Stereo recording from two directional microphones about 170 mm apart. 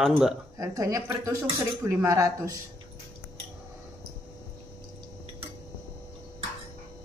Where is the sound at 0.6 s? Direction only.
20° right (ahead or behind).